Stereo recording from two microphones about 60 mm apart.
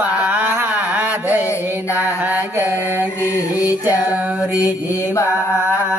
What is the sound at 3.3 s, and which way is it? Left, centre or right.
Music, left.